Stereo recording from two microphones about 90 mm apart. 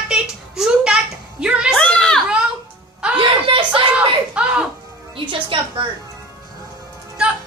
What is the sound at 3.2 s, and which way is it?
Speech, 70° right (ahead or behind).